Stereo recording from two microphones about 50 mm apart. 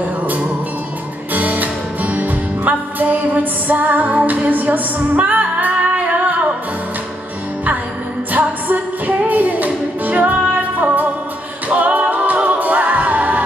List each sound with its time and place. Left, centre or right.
1.3 s music: right
8.3 s music: right
11.7 s music: right